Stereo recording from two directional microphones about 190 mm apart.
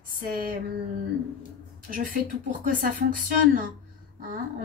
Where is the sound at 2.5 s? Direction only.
45° right (ahead or behind).